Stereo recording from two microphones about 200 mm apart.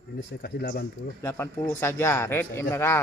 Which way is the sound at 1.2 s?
15° left (ahead or behind).